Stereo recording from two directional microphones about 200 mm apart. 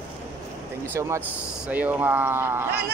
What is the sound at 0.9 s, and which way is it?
Speech, 10° right (ahead or behind).